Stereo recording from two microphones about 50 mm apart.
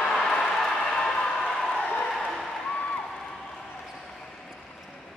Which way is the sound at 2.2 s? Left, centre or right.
Centre.